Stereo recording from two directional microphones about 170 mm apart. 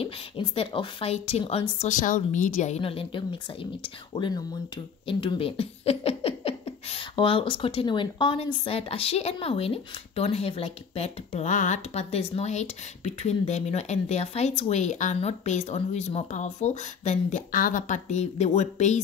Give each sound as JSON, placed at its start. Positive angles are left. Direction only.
{"t": 0.0, "sound": "speech", "side_deg": 30}
{"t": 1.9, "sound": "a woman's voice", "side_deg": 50}